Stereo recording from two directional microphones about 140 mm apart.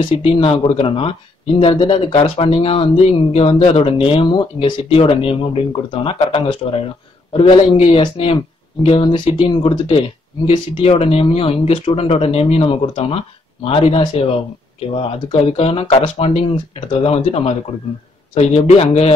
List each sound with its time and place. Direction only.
0.2 s speech: 40° left (ahead or behind)